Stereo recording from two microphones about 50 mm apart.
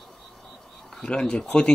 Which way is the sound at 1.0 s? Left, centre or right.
Centre.